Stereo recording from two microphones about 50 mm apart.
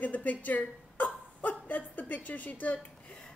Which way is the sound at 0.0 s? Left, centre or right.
Left.